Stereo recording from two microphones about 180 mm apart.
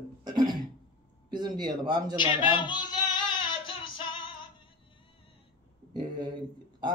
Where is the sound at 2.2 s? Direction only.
25° left (ahead or behind).